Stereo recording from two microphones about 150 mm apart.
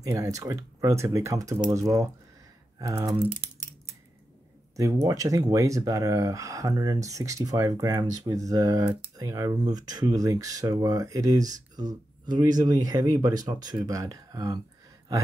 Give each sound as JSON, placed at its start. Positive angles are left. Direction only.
{"t": 0.0, "sound": "speech", "side_deg": -20}
{"t": 5.0, "sound": "speech", "side_deg": -20}